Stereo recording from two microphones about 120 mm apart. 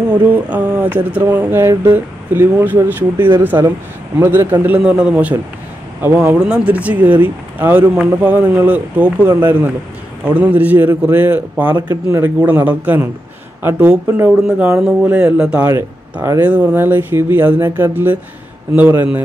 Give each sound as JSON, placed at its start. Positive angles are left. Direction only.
{"t": 0.3, "sound": "speech", "side_deg": -10}
{"t": 14.3, "sound": "speech", "side_deg": -5}
{"t": 15.6, "sound": "speech", "side_deg": -25}
{"t": 16.3, "sound": "speech", "side_deg": -10}